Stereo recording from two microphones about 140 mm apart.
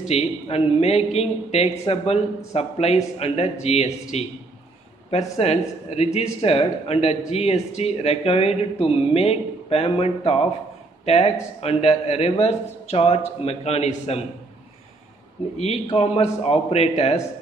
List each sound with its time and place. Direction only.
0.1 s speech: 50° left (ahead or behind)
15.5 s speech: 50° left (ahead or behind)